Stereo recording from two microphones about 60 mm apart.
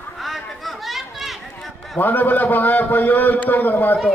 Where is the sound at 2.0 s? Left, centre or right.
Left.